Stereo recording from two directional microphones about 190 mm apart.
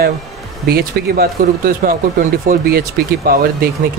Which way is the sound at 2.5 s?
45° right (ahead or behind).